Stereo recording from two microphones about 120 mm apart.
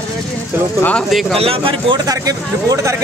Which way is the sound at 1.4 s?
50° right (ahead or behind).